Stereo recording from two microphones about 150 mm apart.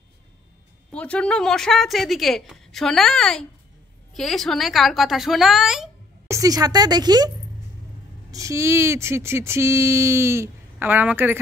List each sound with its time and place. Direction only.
0.9 s speech: 5° left (ahead or behind)
6.2 s speech: 20° right (ahead or behind)